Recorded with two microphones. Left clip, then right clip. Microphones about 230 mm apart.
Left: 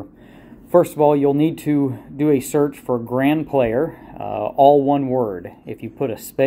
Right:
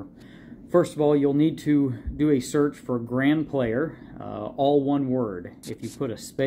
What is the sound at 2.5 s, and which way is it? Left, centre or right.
Speech, left.